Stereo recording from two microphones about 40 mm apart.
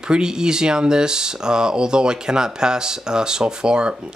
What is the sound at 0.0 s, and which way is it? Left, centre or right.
Speech, centre.